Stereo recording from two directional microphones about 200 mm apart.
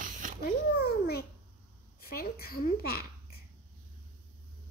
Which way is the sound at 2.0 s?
50° left (ahead or behind).